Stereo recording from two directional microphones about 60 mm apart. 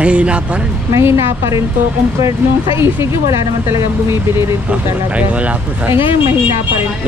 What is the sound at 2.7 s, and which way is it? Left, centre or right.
A woman's voice, right.